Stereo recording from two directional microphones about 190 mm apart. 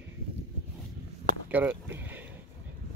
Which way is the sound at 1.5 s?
10° right (ahead or behind).